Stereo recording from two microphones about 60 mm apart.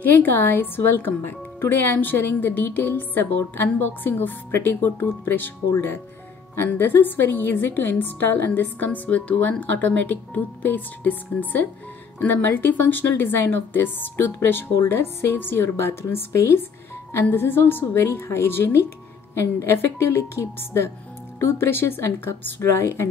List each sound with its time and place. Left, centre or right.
0.0 s speech: left
6.5 s speech: left